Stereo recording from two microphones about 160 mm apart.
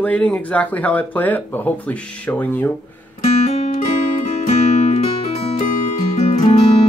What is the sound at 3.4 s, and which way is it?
Music, 45° left (ahead or behind).